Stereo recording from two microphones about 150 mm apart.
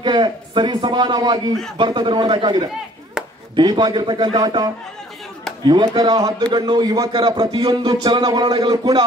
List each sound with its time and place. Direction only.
0.0 s a man's voice: 30° right (ahead or behind)
3.2 s a sound: 5° right (ahead or behind)
3.5 s a man's voice: 30° right (ahead or behind)
5.7 s a man's voice: 25° right (ahead or behind)